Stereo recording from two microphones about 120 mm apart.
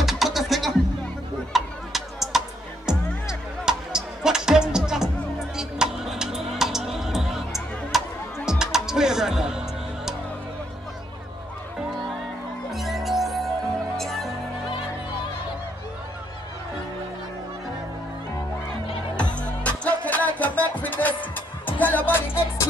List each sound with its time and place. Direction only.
0.0 s music: centre (ahead or behind)
12.7 s music: centre (ahead or behind)
19.4 s music: 10° left (ahead or behind)